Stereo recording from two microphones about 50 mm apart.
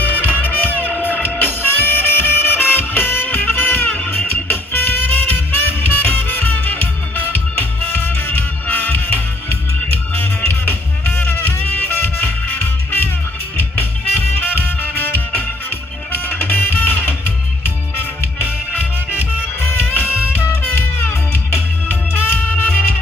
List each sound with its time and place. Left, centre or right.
0.0 s music: left
19.6 s music: left